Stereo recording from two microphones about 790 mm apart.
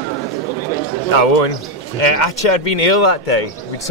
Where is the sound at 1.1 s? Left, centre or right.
Left.